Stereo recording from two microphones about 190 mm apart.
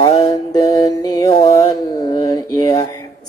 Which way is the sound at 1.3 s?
30° left (ahead or behind).